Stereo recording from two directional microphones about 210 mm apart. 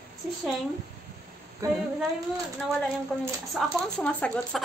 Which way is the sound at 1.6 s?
15° right (ahead or behind).